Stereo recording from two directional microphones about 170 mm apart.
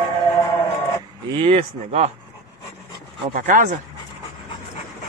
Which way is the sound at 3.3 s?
55° right (ahead or behind).